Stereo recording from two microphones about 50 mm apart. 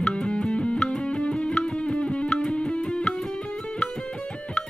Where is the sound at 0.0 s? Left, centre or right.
Left.